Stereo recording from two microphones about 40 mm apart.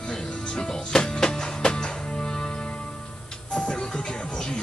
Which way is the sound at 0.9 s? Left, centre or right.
Centre.